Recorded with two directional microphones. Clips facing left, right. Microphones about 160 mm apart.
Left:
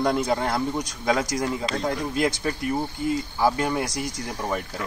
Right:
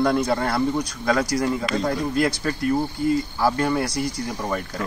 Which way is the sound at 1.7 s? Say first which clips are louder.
Right 3 dB; 5° left (ahead or behind).